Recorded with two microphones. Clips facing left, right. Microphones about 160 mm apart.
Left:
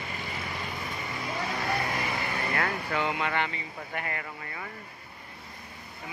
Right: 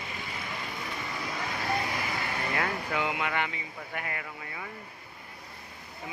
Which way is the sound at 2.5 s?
10° right (ahead or behind).